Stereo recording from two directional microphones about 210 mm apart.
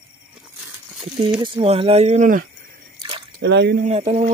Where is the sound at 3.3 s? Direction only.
55° right (ahead or behind).